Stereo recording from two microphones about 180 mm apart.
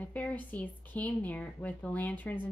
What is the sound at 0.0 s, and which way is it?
Speech, 10° left (ahead or behind).